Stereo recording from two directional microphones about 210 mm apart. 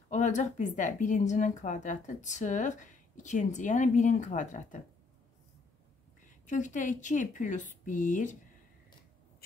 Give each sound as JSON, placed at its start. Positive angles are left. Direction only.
{"t": 0.1, "sound": "a woman's voice", "side_deg": 35}
{"t": 6.4, "sound": "a woman's voice", "side_deg": 35}